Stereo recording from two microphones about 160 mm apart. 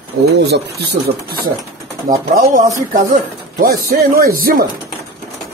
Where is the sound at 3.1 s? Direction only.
60° right (ahead or behind).